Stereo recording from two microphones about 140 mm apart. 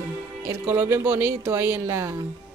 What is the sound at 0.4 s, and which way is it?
Speech, 20° right (ahead or behind).